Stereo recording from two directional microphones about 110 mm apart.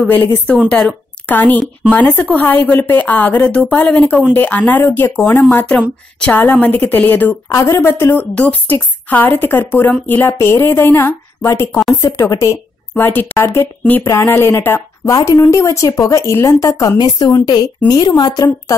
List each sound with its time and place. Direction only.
0.1 s a woman's voice: 15° left (ahead or behind)
7.4 s a woman's voice: 25° left (ahead or behind)